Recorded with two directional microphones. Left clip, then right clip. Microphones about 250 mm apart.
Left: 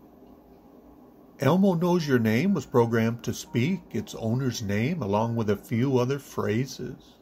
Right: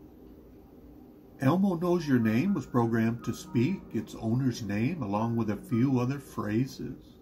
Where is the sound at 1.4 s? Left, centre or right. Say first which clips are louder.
Left 5 dB; left.